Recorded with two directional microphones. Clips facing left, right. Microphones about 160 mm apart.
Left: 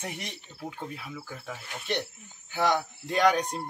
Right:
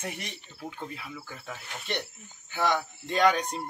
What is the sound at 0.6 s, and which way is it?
Speech, 5° left (ahead or behind).